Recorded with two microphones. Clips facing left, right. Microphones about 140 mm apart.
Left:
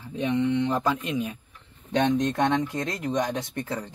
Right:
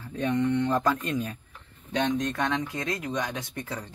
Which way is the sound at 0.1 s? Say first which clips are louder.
Left 1 dB; 15° left (ahead or behind).